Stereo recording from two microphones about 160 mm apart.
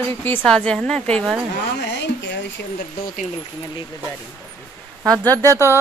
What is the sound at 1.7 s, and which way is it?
Speech, 90° left.